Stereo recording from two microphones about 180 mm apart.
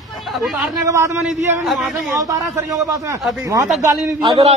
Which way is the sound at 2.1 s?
20° right (ahead or behind).